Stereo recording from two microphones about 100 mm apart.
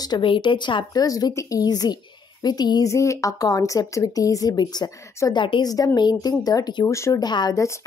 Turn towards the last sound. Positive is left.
turn(degrees=35)  # may be behind; listen again after turning